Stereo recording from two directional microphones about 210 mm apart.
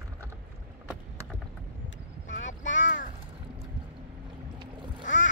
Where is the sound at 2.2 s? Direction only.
65° left (ahead or behind).